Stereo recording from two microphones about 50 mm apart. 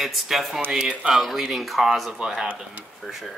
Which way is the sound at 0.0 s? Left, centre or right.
Centre.